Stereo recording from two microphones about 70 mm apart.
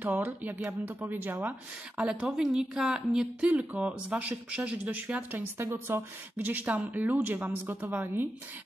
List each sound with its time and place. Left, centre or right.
0.0 s speech: right
2.0 s a woman's voice: centre
5.9 s speech: right